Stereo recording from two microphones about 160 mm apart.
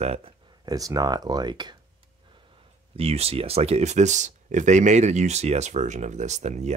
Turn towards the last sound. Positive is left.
turn(degrees=-45)  # may be behind; listen again after turning